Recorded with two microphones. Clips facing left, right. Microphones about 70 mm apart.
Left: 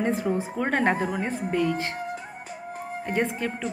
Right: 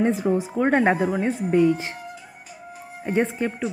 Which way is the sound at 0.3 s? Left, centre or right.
Centre.